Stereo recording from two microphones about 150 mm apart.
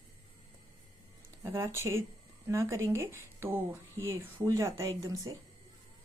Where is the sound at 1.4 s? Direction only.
20° right (ahead or behind).